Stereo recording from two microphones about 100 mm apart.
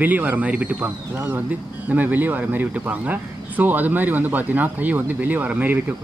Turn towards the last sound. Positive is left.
turn(degrees=-15)  # may be behind; listen again after turning